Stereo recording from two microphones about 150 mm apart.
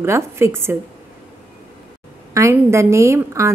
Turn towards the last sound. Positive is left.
turn(degrees=-20)  # may be behind; listen again after turning